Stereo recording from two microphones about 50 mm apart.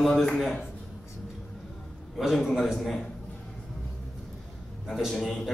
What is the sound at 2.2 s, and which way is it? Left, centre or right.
Speech, centre.